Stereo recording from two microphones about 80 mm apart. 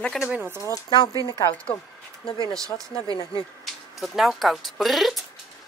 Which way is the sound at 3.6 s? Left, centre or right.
Centre.